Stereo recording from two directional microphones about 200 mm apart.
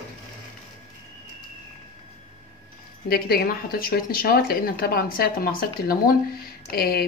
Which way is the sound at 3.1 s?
50° left (ahead or behind).